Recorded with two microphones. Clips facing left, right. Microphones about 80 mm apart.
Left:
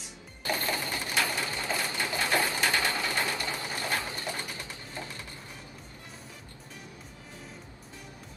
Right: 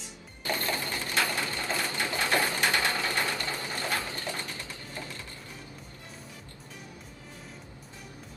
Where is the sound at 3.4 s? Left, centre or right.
Left.